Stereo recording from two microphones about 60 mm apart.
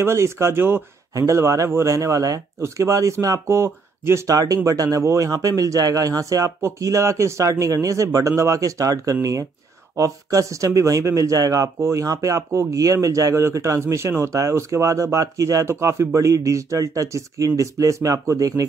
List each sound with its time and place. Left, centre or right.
0.0 s speech: right
1.1 s speech: right
4.3 s speech: right
5.3 s speech: right
11.8 s speech: right
15.6 s speech: right